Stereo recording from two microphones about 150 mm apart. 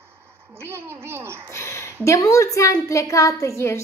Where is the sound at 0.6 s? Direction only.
15° right (ahead or behind).